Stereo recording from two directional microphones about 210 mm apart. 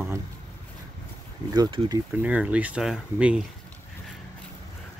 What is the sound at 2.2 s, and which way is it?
Speech, 5° right (ahead or behind).